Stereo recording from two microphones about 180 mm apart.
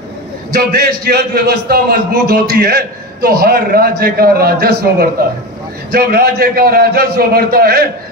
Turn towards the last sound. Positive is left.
turn(degrees=-55)  # may be behind; listen again after turning